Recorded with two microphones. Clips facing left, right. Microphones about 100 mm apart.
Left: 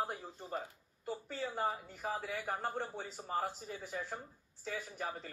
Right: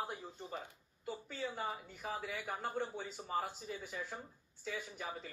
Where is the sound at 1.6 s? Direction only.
50° left (ahead or behind).